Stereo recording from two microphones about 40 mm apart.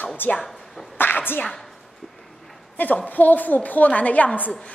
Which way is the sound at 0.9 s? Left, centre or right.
Left.